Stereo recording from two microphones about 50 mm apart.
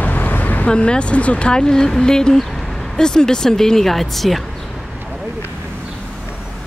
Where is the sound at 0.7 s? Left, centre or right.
Centre.